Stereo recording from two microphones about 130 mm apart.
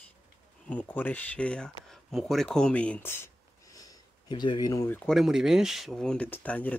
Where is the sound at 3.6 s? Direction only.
25° left (ahead or behind).